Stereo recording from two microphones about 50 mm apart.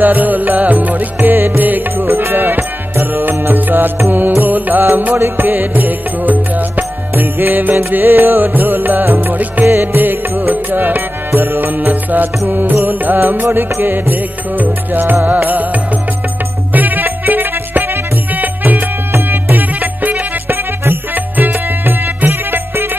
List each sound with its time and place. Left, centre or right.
0.0 s music: right
2.0 s music: right